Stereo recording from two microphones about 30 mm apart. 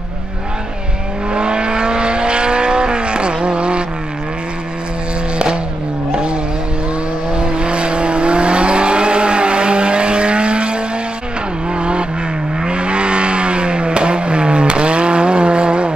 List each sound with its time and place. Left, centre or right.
1.3 s vehicle: right
6.1 s vehicle: right